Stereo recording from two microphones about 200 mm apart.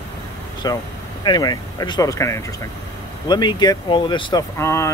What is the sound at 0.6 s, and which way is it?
Speech, 20° left (ahead or behind).